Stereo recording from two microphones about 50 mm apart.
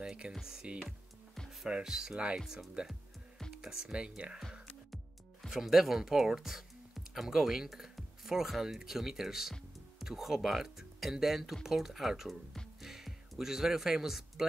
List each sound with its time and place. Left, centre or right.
0.0 s music: centre
0.3 s speech: centre
1.7 s speech: centre
2.4 s speech: centre
3.6 s speech: centre
4.4 s music: centre
5.5 s speech: centre
12.8 s music: centre